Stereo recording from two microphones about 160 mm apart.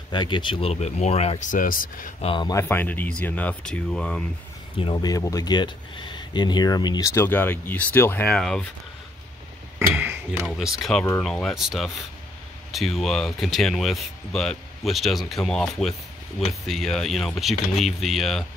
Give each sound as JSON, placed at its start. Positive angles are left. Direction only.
{"t": 0.1, "sound": "speech", "side_deg": 30}
{"t": 2.2, "sound": "speech", "side_deg": 30}
{"t": 2.5, "sound": "speech", "side_deg": 15}
{"t": 4.8, "sound": "speech", "side_deg": 25}
{"t": 9.8, "sound": "a sound", "side_deg": -10}
{"t": 10.5, "sound": "speech", "side_deg": 0}